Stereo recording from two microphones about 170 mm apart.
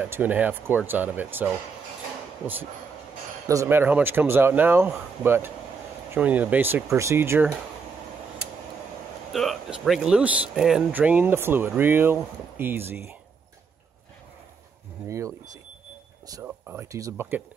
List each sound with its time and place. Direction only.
0.0 s speech: 10° right (ahead or behind)
3.4 s speech: 15° right (ahead or behind)
9.3 s speech: centre (ahead or behind)
15.0 s speech: 15° right (ahead or behind)
16.4 s speech: 15° right (ahead or behind)